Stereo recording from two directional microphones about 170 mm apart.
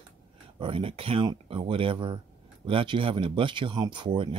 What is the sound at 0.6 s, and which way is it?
Speech, 30° right (ahead or behind).